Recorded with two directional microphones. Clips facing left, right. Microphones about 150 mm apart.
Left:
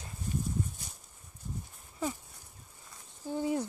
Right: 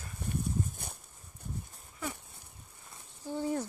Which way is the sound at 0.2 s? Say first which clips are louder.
Left 1 dB; 60° right (ahead or behind).